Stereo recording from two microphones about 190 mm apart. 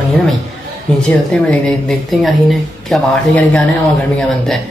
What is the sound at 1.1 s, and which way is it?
Speech, 5° left (ahead or behind).